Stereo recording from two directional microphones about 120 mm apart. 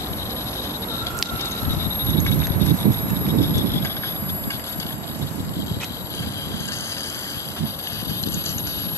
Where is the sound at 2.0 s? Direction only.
20° left (ahead or behind).